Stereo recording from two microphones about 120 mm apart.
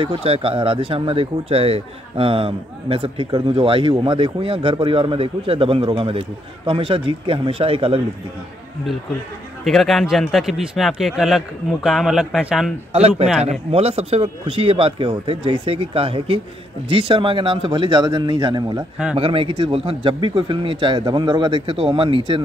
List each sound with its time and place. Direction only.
0.0 s speech: 50° right (ahead or behind)
9.7 s speech: centre (ahead or behind)
12.9 s speech: 60° right (ahead or behind); by 18.9 s 35° right (ahead or behind)
19.1 s speech: 45° right (ahead or behind)